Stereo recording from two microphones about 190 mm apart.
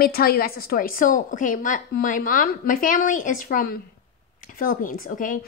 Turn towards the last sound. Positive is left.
turn(degrees=45)  # may be behind; listen again after turning